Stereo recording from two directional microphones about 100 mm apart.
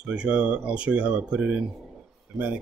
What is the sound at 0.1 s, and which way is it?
Speech, 10° right (ahead or behind).